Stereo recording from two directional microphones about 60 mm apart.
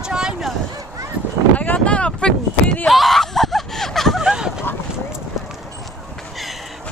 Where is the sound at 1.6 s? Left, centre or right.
Left.